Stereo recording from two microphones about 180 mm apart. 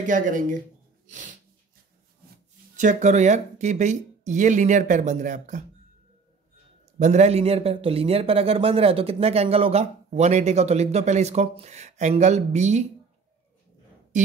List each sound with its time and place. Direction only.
0.0 s speech: 45° right (ahead or behind)
2.7 s speech: 45° right (ahead or behind)
7.0 s a man's voice: 40° right (ahead or behind)
14.1 s speech: 45° right (ahead or behind)